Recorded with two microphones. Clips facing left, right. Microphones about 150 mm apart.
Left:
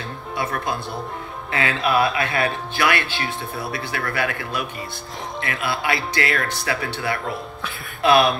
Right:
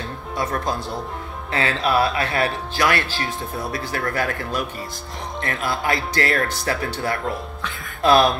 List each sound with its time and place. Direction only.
0.4 s speech: 40° right (ahead or behind)